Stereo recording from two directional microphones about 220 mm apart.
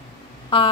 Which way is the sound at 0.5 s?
25° left (ahead or behind).